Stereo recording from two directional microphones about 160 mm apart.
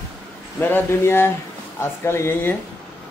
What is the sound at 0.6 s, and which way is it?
A man's voice, 15° left (ahead or behind).